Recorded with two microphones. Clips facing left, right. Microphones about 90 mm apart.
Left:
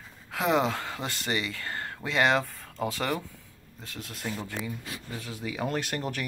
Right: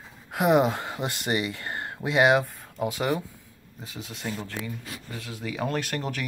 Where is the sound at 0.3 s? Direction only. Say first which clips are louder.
Right 4 dB; 15° right (ahead or behind).